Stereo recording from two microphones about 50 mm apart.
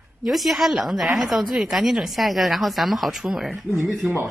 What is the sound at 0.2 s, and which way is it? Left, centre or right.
A woman's voice, centre.